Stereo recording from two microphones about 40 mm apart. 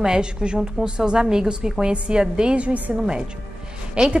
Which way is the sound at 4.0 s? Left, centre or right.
Right.